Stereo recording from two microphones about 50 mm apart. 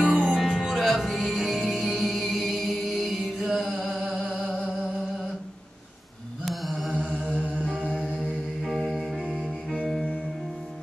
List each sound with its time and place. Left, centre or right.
0.2 s music: centre
6.4 s mantra: centre
7.2 s music: right
8.6 s music: centre